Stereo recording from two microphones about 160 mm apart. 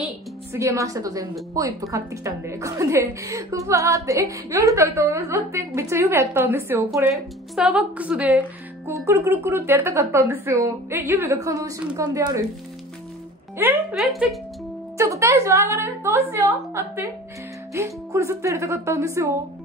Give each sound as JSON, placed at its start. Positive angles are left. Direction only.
{"t": 0.5, "sound": "a woman's voice", "side_deg": -20}
{"t": 13.9, "sound": "speech", "side_deg": 0}
{"t": 15.0, "sound": "a woman's voice", "side_deg": -20}